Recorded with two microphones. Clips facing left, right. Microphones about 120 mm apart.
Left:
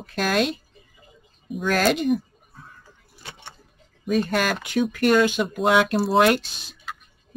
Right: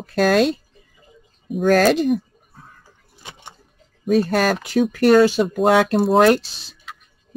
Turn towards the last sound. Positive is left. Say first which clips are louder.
# right 5 dB
turn(degrees=-35)  # may be behind; listen again after turning